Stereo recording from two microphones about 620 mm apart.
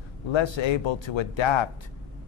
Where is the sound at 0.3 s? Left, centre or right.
Left.